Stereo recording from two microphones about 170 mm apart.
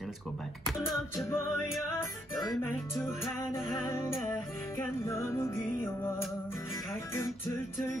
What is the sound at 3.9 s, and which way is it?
Music, 15° left (ahead or behind).